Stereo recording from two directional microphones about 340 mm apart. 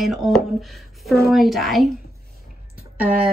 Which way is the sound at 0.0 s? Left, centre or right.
Centre.